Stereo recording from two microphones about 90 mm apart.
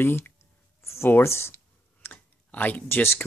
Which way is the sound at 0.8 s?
30° left (ahead or behind).